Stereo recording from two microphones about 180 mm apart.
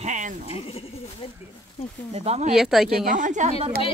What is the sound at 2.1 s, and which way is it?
Speech, 40° right (ahead or behind).